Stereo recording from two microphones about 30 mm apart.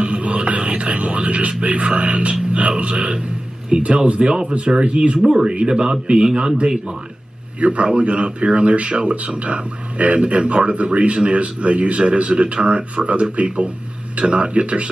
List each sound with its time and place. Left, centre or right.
0.0 s a sound: right
2.0 s speech: right
4.3 s a man's voice: right
4.8 s speech: right
5.3 s a man's voice: right
7.8 s speech: right